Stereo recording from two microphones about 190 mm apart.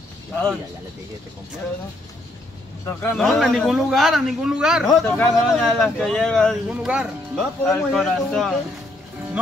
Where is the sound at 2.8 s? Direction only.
15° left (ahead or behind).